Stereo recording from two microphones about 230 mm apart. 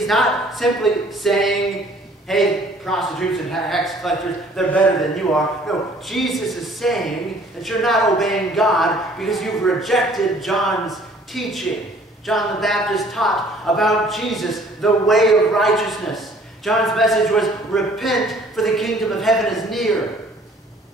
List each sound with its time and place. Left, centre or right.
0.0 s speech: centre